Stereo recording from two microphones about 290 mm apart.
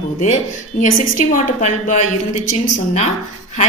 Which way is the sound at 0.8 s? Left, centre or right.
Left.